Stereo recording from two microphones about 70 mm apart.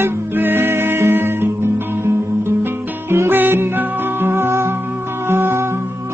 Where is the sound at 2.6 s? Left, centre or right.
Right.